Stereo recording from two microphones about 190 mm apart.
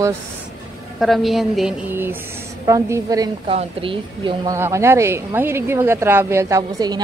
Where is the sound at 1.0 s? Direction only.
Centre (ahead or behind); by 3.3 s 15° right (ahead or behind).